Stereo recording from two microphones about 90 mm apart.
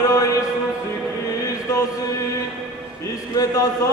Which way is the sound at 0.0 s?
40° left (ahead or behind).